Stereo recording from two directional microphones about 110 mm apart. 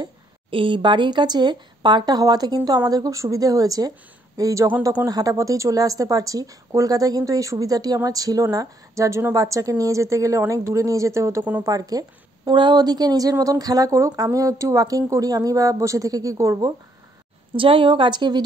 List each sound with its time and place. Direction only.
0.0 s speech: 50° right (ahead or behind); by 16.7 s 35° right (ahead or behind)
17.6 s a woman's voice: 50° right (ahead or behind)